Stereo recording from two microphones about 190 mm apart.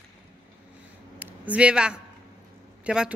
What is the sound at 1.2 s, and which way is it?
Speech, 10° right (ahead or behind).